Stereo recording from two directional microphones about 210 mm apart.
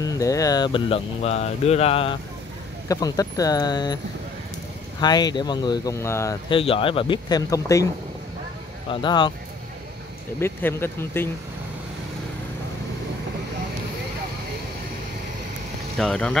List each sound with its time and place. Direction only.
0.0 s speech: 15° left (ahead or behind)
5.0 s speech: 20° left (ahead or behind)
6.5 s speech: 25° left (ahead or behind)
10.4 s speech: 10° left (ahead or behind)
16.0 s speech: 5° left (ahead or behind)